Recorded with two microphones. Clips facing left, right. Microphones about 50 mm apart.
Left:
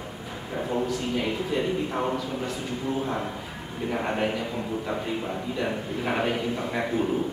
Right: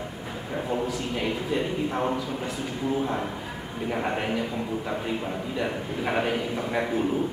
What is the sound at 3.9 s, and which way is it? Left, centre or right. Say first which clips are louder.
Speech: left 1 dB; centre.